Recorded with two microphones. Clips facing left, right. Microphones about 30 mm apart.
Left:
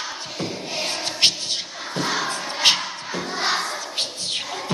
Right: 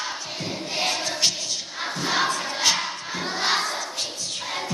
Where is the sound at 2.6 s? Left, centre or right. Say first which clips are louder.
Left 5 dB; left.